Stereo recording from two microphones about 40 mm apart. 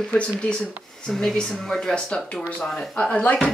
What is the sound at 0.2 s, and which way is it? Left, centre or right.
Speech, left.